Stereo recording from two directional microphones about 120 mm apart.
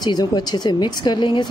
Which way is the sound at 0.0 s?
35° left (ahead or behind).